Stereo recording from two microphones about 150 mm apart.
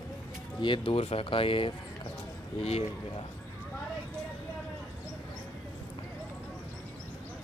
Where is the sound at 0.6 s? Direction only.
35° left (ahead or behind).